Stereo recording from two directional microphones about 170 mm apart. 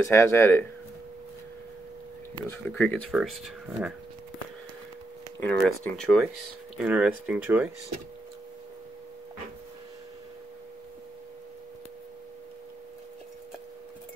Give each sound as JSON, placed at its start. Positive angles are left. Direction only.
{"t": 0.0, "sound": "speech", "side_deg": 15}
{"t": 2.7, "sound": "speech", "side_deg": 10}
{"t": 5.4, "sound": "speech", "side_deg": 5}